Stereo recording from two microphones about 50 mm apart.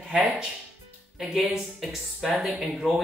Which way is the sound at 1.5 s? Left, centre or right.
Centre.